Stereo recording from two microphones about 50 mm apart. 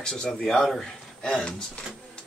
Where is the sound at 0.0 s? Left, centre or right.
Centre.